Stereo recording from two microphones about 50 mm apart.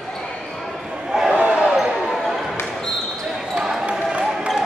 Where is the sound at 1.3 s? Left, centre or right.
Right.